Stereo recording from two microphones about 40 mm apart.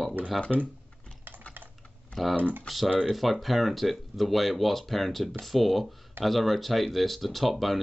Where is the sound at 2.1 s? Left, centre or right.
Left.